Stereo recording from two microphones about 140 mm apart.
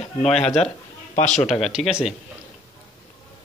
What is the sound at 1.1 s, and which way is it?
Speech, 55° left (ahead or behind).